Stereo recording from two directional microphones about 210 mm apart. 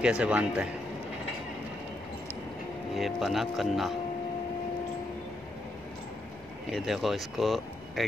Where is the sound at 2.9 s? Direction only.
Centre (ahead or behind).